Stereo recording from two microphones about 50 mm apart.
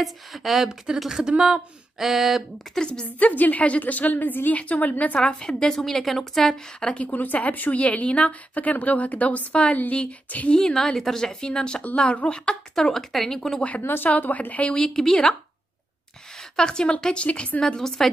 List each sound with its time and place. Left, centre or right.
0.0 s a sound: centre
0.7 s speech: centre
1.4 s a sound: centre
3.2 s a woman's voice: left
5.2 s a woman's voice: centre
6.8 s a woman's voice: left
9.5 s a woman's voice: left
10.6 s a woman's voice: centre
12.7 s a sound: centre
13.6 s a woman's voice: left
13.8 s a woman's voice: left
14.7 s a woman's voice: centre
16.5 s a woman's voice: centre
17.6 s a woman's voice: centre